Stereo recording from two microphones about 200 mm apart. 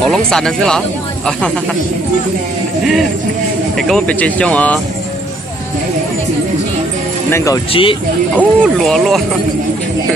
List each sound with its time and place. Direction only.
0.0 s speech: centre (ahead or behind)
3.7 s speech: centre (ahead or behind)
7.2 s speech: 15° left (ahead or behind)
7.7 s speech: 25° left (ahead or behind)
8.4 s speech: centre (ahead or behind)